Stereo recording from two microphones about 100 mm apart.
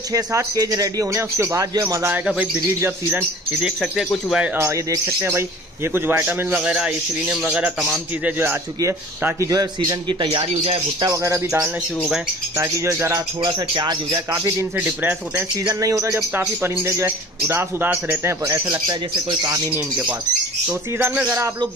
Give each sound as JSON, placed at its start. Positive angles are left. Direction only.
{"t": 0.1, "sound": "speech", "side_deg": -35}
{"t": 2.2, "sound": "a man's voice", "side_deg": -10}
{"t": 2.8, "sound": "a man's voice", "side_deg": -20}
{"t": 3.6, "sound": "a man's voice", "side_deg": -5}
{"t": 4.6, "sound": "a man's voice", "side_deg": -25}
{"t": 8.8, "sound": "speech", "side_deg": -30}
{"t": 10.4, "sound": "speech", "side_deg": -80}
{"t": 11.0, "sound": "speech", "side_deg": -35}
{"t": 12.5, "sound": "a man's voice", "side_deg": -30}
{"t": 13.4, "sound": "speech", "side_deg": -45}
{"t": 14.8, "sound": "a man's voice", "side_deg": -15}
{"t": 15.8, "sound": "a man's voice", "side_deg": -30}
{"t": 19.7, "sound": "a man's voice", "side_deg": -15}